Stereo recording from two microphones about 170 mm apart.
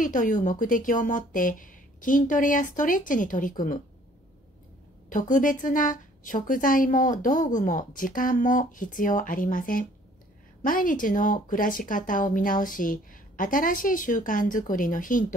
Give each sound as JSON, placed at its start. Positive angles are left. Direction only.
{"t": 0.0, "sound": "a woman's voice", "side_deg": 50}
{"t": 5.1, "sound": "a woman's voice", "side_deg": 50}